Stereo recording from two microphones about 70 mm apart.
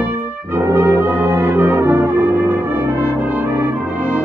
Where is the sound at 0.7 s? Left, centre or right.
Right.